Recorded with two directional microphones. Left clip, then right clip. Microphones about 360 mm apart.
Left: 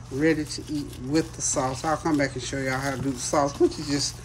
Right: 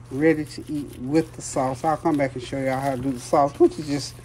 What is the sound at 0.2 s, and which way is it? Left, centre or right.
Speech, centre.